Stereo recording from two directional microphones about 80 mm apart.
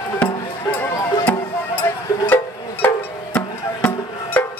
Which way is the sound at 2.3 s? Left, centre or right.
Left.